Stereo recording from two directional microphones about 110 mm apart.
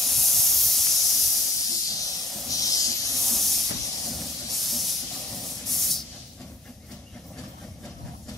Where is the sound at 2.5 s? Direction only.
30° left (ahead or behind).